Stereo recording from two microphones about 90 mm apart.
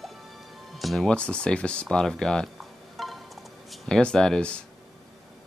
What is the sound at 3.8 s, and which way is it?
Speech, 5° left (ahead or behind).